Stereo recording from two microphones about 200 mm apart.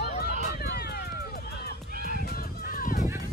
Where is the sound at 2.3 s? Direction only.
50° left (ahead or behind).